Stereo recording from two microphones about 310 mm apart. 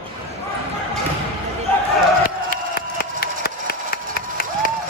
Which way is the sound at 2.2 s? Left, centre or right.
Left.